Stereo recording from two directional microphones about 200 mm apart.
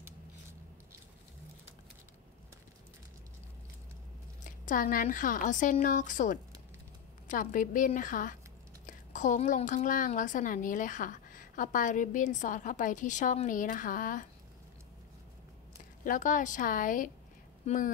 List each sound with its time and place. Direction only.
4.5 s a woman's voice: 40° left (ahead or behind)
16.0 s a woman's voice: 40° left (ahead or behind)